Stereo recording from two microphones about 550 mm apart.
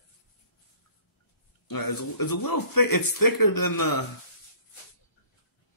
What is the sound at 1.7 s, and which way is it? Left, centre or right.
Speech, left.